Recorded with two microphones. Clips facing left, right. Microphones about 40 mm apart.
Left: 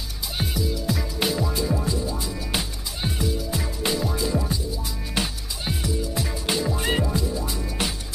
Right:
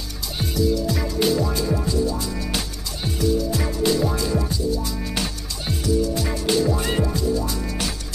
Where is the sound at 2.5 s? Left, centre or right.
Centre.